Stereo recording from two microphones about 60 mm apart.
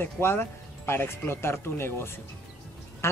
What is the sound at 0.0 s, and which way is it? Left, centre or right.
Speech, left.